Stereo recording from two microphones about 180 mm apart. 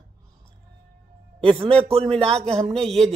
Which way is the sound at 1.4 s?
30° right (ahead or behind).